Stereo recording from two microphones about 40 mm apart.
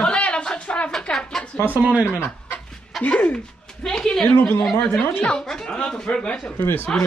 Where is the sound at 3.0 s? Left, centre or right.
Left.